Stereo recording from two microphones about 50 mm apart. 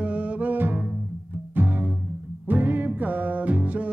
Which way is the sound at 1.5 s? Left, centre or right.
Right.